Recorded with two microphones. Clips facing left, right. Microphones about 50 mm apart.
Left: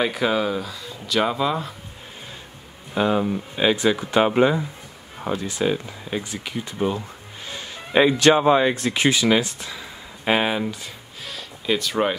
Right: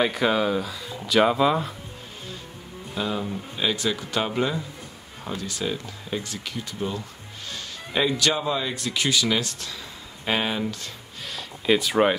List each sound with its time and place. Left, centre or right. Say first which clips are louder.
0.0 s speech: even; centre
2.9 s speech: left 7 dB; left
7.4 s music: left 2 dB; left
8.2 s speech: left 9 dB; left; by 10.9 s centre
11.2 s a sound: right 2 dB; centre